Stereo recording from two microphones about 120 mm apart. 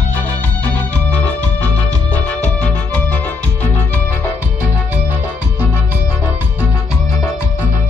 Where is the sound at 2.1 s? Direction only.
10° left (ahead or behind).